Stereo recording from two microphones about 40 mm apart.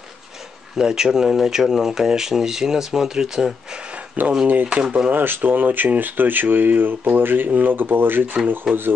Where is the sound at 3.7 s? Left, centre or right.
Right.